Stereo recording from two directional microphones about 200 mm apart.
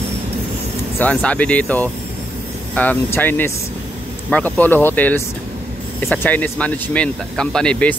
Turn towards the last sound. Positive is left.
turn(degrees=5)  # may be behind; listen again after turning